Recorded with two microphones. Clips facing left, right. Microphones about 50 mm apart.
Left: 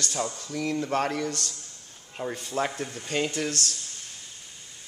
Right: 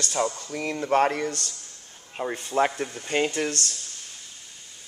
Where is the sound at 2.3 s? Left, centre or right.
Right.